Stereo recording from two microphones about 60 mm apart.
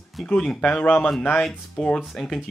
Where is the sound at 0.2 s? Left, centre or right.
Centre.